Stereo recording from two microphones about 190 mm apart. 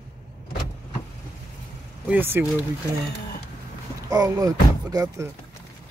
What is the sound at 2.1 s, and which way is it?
Speech, 10° right (ahead or behind).